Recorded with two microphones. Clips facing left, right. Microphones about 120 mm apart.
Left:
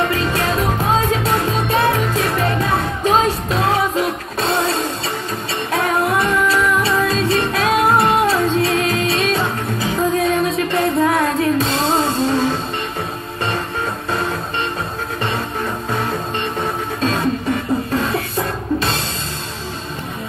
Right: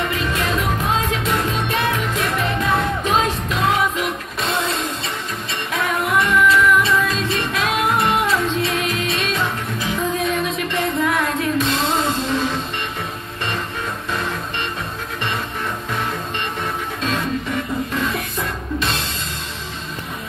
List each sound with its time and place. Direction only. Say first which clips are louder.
0.1 s music: left 3 dB; 40° left (ahead or behind)